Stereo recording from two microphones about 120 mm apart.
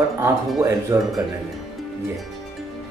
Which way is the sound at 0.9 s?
20° right (ahead or behind).